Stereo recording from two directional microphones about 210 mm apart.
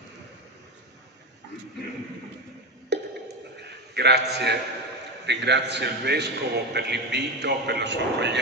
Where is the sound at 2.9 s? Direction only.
55° right (ahead or behind).